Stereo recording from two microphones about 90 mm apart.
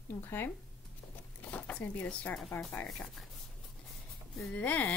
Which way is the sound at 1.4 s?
15° left (ahead or behind).